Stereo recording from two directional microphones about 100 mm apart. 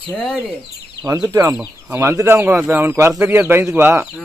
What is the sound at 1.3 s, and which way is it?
Speech, 30° right (ahead or behind).